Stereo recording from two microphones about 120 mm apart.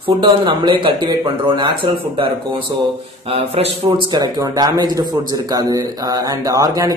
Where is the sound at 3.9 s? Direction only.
40° right (ahead or behind).